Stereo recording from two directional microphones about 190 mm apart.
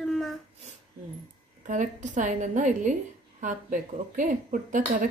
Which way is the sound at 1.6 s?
40° right (ahead or behind).